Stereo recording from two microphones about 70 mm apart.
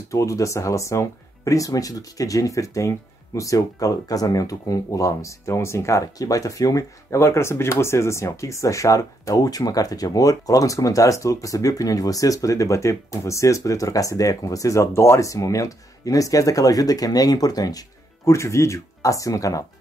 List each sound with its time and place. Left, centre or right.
0.1 s speech: left
7.2 s speech: left
18.2 s speech: left